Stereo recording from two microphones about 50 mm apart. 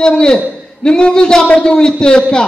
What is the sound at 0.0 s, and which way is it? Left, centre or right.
A man's voice, centre.